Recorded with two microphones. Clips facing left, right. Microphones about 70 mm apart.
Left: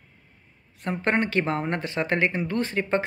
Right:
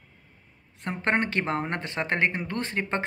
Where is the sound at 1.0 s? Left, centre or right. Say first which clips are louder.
Left 2 dB; right.